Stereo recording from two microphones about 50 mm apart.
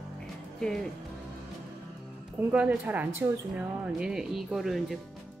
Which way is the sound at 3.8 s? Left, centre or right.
Centre.